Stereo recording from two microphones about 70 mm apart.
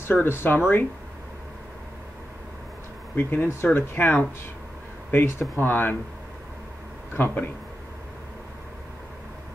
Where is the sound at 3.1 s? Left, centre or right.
Left.